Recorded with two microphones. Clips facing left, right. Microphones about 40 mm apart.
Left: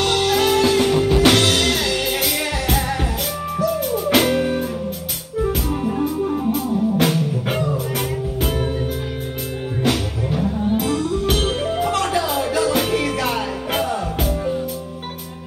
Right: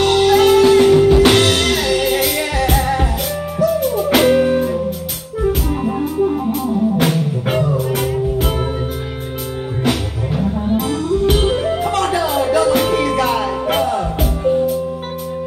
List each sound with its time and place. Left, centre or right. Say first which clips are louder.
0.0 s music: right 6 dB; centre
9.8 s music: right 1 dB; centre